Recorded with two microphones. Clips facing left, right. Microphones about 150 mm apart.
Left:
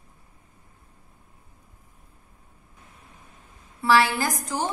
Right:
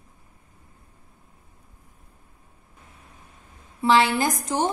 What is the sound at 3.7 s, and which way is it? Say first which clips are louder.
Speech: right 1 dB; 20° right (ahead or behind).